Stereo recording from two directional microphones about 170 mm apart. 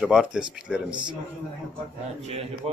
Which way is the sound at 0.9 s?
25° right (ahead or behind).